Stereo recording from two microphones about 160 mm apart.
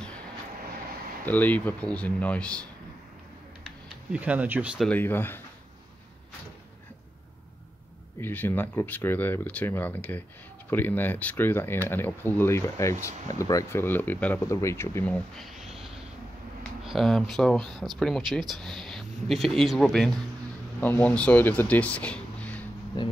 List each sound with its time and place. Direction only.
1.2 s speech: 10° left (ahead or behind)
3.6 s speech: 10° right (ahead or behind)
4.8 s speech: 10° left (ahead or behind)
8.2 s speech: 10° left (ahead or behind)
15.3 s a sound: centre (ahead or behind)
16.8 s speech: centre (ahead or behind)
23.0 s speech: 30° left (ahead or behind)